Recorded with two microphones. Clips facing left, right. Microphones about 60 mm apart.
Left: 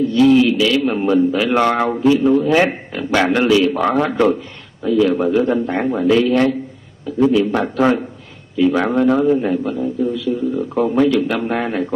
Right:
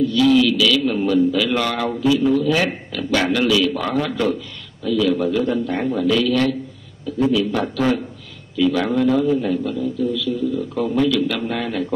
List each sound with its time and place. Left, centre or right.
0.1 s a man's voice: left